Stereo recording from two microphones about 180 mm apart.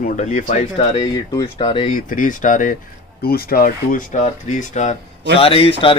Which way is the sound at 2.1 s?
45° left (ahead or behind).